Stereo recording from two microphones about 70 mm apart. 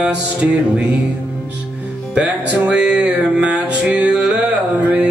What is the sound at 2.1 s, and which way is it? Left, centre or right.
Music, centre.